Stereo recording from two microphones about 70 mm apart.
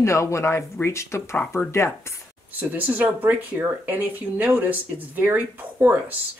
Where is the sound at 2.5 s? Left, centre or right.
Right.